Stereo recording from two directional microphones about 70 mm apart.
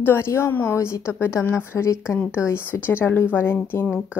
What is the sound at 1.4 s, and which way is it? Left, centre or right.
Speech, left.